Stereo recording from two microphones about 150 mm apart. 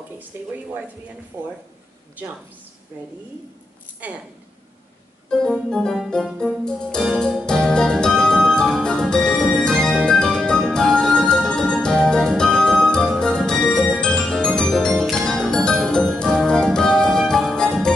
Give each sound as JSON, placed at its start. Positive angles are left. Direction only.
{"t": 0.3, "sound": "speech", "side_deg": -15}
{"t": 2.2, "sound": "speech", "side_deg": -10}
{"t": 4.0, "sound": "speech", "side_deg": -10}
{"t": 5.3, "sound": "keyboard", "side_deg": 5}